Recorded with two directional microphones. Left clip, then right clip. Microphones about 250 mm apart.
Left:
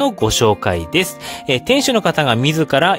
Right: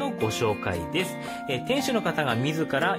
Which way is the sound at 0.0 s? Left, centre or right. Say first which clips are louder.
Left 12 dB; left.